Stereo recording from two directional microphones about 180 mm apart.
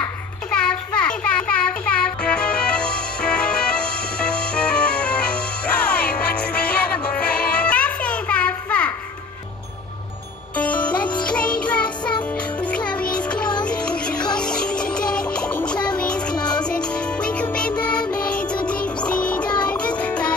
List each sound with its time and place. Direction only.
0.0 s a sound: 5° left (ahead or behind)
6.1 s music: 5° left (ahead or behind)
10.5 s music: 5° left (ahead or behind)
16.3 s music: 25° left (ahead or behind)
16.6 s music: 5° left (ahead or behind)